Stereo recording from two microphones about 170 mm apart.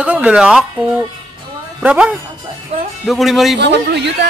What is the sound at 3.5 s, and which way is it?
Speech, 85° right.